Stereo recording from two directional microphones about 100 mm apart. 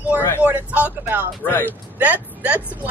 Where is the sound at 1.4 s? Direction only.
20° left (ahead or behind).